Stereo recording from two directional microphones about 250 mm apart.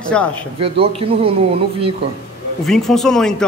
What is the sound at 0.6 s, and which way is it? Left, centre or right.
Speech, right.